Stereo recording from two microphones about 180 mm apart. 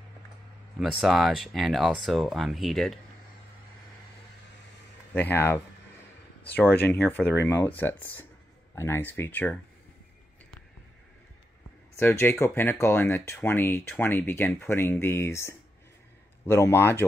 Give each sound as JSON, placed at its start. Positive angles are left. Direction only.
{"t": 0.7, "sound": "speech", "side_deg": 0}
{"t": 5.1, "sound": "speech", "side_deg": 10}
{"t": 12.0, "sound": "speech", "side_deg": 10}